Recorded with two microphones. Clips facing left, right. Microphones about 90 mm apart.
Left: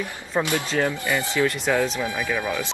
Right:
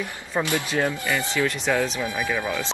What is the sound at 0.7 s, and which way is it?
Speech, 15° right (ahead or behind).